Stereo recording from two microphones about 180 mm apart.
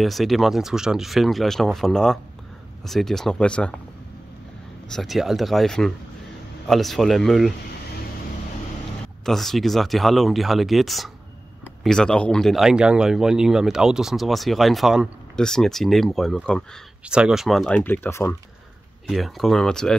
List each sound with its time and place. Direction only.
0.0 s speech: centre (ahead or behind)
4.9 s speech: centre (ahead or behind)
9.2 s speech: centre (ahead or behind)
19.0 s speech: centre (ahead or behind)